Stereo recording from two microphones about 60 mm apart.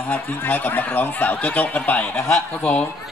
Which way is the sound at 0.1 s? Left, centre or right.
Left.